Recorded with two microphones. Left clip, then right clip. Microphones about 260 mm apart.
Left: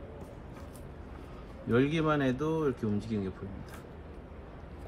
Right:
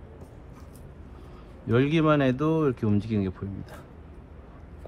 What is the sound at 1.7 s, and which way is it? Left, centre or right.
Speech, right.